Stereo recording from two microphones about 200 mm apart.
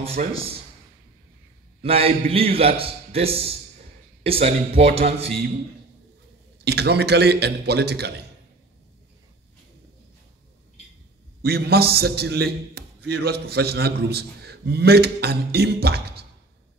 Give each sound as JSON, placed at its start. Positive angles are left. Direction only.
{"t": 0.0, "sound": "speech", "side_deg": -30}
{"t": 1.8, "sound": "a man's voice", "side_deg": -30}
{"t": 6.6, "sound": "a man's voice", "side_deg": -55}
{"t": 11.4, "sound": "a man's voice", "side_deg": -50}